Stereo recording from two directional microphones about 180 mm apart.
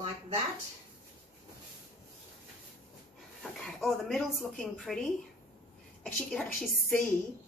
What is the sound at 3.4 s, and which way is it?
Speech, centre (ahead or behind).